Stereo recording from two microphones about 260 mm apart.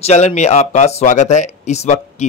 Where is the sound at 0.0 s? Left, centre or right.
Left.